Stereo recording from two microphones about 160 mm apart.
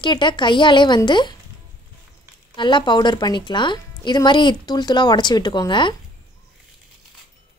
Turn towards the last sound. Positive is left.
turn(degrees=30)  # may be behind; listen again after turning